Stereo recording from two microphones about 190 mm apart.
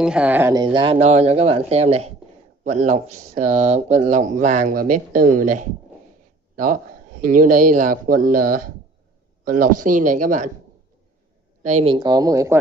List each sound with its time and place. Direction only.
0.0 s speech: 5° right (ahead or behind)
0.7 s speech: 30° right (ahead or behind); by 10.5 s 45° right (ahead or behind)
11.6 s speech: 35° right (ahead or behind); by 12.5 s 15° right (ahead or behind)